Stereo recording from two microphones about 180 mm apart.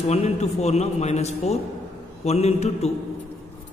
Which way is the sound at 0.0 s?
35° left (ahead or behind).